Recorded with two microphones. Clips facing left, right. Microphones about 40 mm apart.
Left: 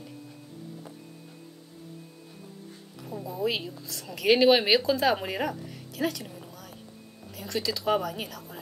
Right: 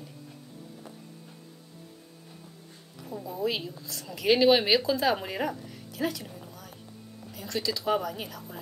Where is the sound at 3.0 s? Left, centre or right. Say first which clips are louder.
Left 1 dB; centre.